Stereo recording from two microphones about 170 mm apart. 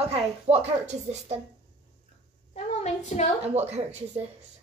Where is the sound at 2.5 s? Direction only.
40° left (ahead or behind).